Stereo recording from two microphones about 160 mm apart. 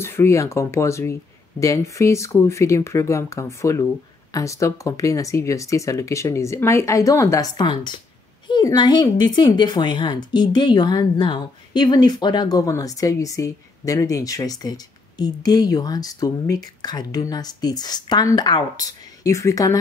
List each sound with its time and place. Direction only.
0.0 s a woman's voice: 15° left (ahead or behind)